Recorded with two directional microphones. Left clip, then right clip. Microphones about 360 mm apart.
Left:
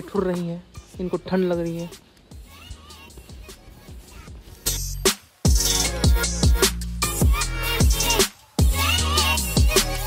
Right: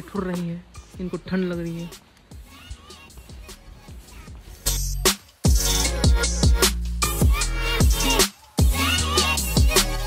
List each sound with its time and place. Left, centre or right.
0.0 s music: left
0.5 s speech: centre
1.6 s speech: centre
2.5 s music: centre
4.6 s music: centre